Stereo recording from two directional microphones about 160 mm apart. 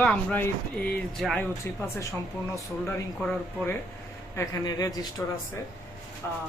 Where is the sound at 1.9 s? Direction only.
20° left (ahead or behind).